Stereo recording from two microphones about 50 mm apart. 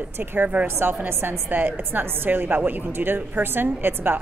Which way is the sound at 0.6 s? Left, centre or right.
Right.